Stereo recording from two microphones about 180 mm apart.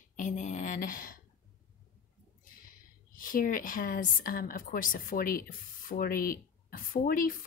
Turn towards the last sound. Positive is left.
turn(degrees=50)  # may be behind; listen again after turning